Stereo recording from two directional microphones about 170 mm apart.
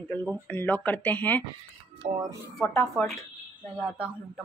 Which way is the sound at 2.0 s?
40° right (ahead or behind).